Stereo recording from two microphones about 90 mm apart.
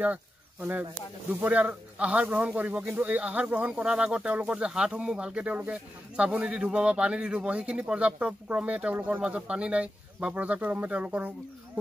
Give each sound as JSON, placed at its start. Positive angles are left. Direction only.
{"t": 0.0, "sound": "speech", "side_deg": -20}